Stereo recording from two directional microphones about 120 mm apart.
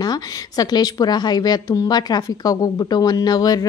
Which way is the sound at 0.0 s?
35° left (ahead or behind).